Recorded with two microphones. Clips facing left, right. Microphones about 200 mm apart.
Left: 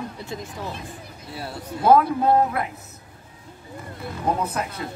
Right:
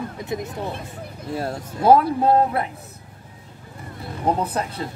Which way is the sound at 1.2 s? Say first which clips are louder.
Right 7 dB; 45° right (ahead or behind).